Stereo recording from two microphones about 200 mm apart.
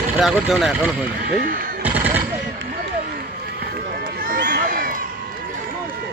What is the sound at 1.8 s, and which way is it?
Machine gun, 10° right (ahead or behind).